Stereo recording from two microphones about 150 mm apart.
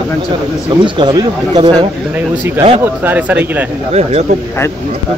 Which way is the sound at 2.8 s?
10° right (ahead or behind).